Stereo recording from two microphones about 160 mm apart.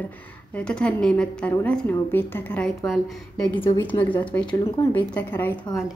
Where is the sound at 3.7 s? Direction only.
20° left (ahead or behind).